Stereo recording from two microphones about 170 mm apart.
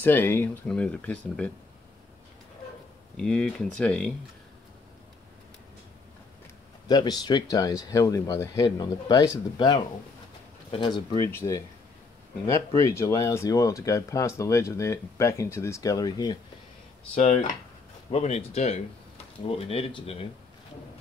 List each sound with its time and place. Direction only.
0.0 s speech: 10° left (ahead or behind)
3.2 s speech: 5° left (ahead or behind)
6.9 s speech: 25° left (ahead or behind)
10.7 s speech: 30° left (ahead or behind)
11.2 s speech: 15° left (ahead or behind)
17.1 s speech: 50° left (ahead or behind); by 20.2 s 30° left (ahead or behind)